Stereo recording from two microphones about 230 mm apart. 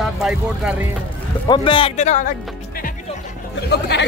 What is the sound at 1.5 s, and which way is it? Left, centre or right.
Speech, left.